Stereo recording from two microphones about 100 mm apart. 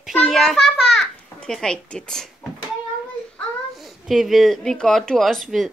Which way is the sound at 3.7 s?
Centre (ahead or behind).